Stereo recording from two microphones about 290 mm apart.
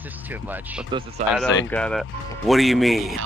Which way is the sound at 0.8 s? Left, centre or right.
Centre.